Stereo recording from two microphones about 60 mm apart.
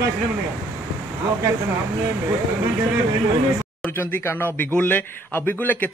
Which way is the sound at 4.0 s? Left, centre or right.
Left.